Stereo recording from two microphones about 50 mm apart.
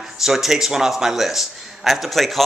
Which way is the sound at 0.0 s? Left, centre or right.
Centre.